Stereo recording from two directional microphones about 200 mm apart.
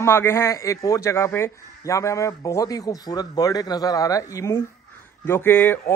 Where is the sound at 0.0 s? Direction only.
10° left (ahead or behind).